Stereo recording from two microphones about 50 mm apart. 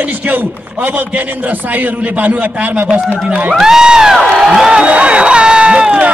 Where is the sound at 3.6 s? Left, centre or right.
Centre.